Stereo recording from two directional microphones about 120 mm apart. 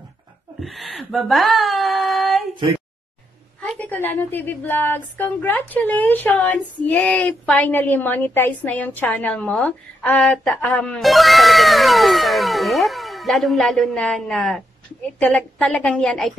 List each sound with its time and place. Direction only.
0.6 s speech: centre (ahead or behind)
3.6 s a woman's voice: 15° left (ahead or behind)
11.0 s cat: centre (ahead or behind)
15.1 s a woman's voice: 10° left (ahead or behind)